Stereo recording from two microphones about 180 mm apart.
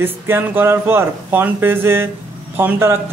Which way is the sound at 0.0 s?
10° right (ahead or behind).